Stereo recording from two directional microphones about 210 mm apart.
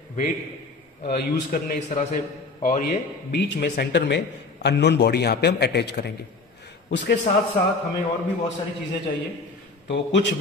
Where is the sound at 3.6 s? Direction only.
50° left (ahead or behind).